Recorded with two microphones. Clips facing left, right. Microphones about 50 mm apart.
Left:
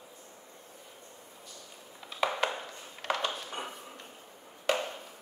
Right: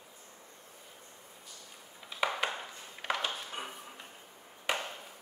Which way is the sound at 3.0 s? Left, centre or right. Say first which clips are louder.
Left 2 dB; centre.